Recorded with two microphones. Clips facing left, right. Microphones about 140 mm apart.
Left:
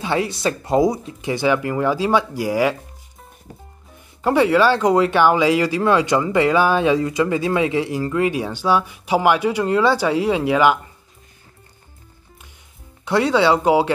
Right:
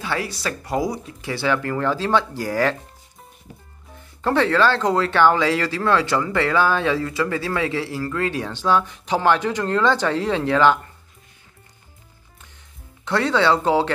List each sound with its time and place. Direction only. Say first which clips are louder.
0.0 s speech: left 5 dB; 20° left (ahead or behind)
4.2 s speech: left 3 dB; 10° left (ahead or behind)
13.0 s speech: left 3 dB; 10° left (ahead or behind)